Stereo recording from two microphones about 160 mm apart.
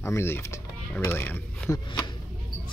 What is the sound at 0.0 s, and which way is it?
Speech, 15° left (ahead or behind).